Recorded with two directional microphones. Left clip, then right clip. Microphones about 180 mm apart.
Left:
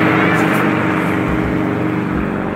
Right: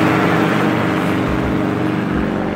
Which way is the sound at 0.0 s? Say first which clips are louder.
Left 1 dB; 20° left (ahead or behind).